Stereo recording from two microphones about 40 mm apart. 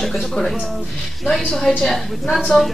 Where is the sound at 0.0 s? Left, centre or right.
Centre.